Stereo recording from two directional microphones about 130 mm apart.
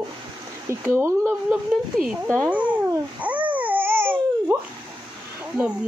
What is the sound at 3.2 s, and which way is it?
Babbling, 10° right (ahead or behind).